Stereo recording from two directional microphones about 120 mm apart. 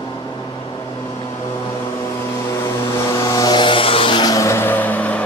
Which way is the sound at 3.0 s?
30° left (ahead or behind).